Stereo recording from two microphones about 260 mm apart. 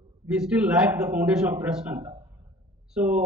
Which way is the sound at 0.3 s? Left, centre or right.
Centre.